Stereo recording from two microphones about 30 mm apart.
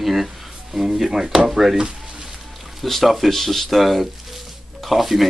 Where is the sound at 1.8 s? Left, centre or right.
Right.